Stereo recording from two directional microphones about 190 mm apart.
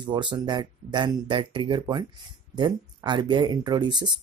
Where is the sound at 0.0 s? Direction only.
25° right (ahead or behind).